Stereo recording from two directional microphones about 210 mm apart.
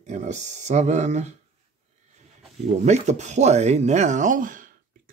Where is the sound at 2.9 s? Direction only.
35° right (ahead or behind).